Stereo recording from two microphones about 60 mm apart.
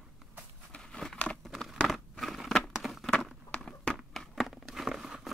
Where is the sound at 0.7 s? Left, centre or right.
Centre.